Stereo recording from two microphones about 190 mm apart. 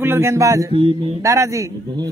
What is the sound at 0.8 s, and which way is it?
Speech, 30° right (ahead or behind).